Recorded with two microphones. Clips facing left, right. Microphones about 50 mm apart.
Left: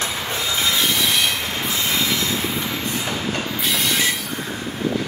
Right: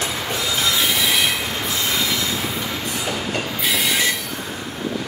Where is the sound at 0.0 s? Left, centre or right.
Left.